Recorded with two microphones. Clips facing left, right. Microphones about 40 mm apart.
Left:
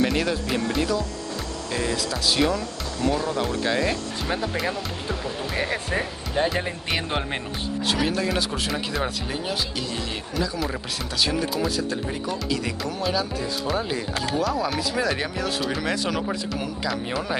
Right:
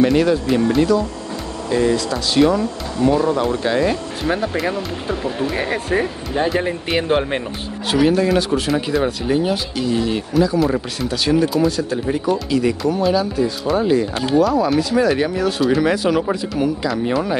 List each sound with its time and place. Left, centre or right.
0.0 s speech: centre
2.5 s speech: right
3.3 s speech: centre
4.2 s speech: centre
5.5 s speech: centre